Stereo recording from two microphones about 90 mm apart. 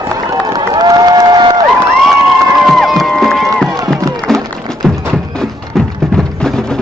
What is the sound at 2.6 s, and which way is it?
Crowd, centre (ahead or behind).